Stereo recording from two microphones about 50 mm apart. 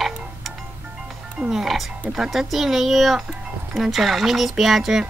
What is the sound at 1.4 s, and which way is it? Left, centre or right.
Speech, centre.